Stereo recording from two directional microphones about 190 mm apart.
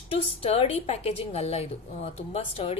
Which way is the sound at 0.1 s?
30° left (ahead or behind).